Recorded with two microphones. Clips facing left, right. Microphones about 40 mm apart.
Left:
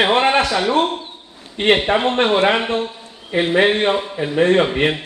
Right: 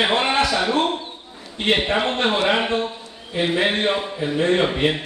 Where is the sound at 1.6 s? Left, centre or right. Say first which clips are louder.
Left 6 dB; left.